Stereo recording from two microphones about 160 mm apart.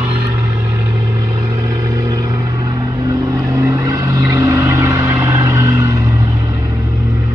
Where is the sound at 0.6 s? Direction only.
20° right (ahead or behind).